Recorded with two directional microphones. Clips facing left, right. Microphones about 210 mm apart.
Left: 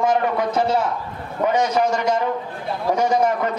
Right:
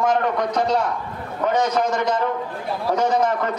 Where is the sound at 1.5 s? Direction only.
10° left (ahead or behind).